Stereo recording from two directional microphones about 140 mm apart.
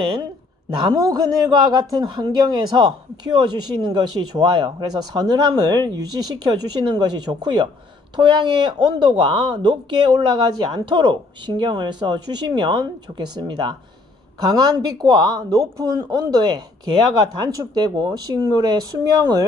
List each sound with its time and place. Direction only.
0.8 s speech: 25° right (ahead or behind)